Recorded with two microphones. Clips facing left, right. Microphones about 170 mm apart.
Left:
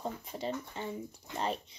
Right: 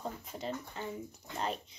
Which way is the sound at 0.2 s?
Centre (ahead or behind).